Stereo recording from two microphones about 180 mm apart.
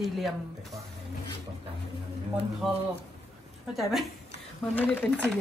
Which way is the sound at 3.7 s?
Centre (ahead or behind).